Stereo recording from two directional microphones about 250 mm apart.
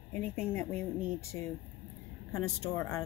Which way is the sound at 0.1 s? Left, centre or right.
Centre.